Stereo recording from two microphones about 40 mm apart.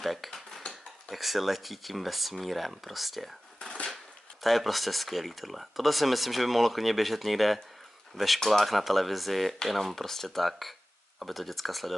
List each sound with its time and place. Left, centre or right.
0.0 s speech: centre
0.3 s dishes: centre
1.1 s speech: centre